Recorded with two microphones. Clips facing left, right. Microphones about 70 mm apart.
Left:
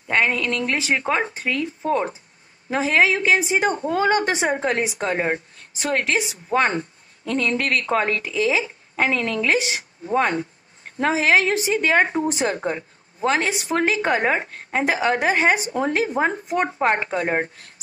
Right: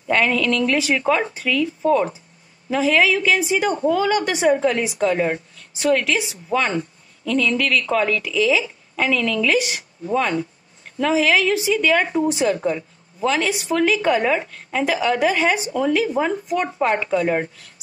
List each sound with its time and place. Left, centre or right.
0.1 s a woman's voice: left